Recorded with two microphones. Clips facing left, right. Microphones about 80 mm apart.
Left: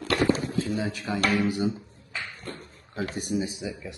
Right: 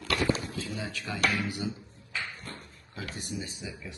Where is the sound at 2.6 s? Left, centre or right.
Left.